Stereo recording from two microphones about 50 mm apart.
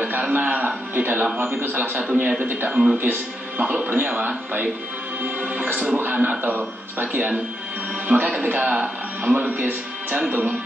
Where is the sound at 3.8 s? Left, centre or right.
Right.